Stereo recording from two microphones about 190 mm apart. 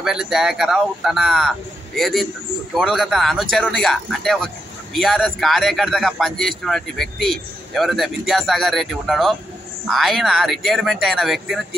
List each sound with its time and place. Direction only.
0.0 s a man's voice: 5° right (ahead or behind)